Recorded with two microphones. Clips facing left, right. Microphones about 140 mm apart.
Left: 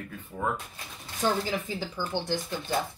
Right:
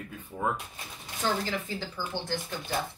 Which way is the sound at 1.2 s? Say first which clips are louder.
Left 2 dB; 15° left (ahead or behind).